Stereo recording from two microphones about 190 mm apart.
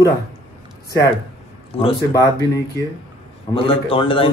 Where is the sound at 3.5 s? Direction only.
30° left (ahead or behind).